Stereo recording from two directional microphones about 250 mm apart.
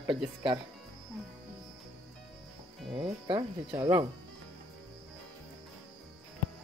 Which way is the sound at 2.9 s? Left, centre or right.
Right.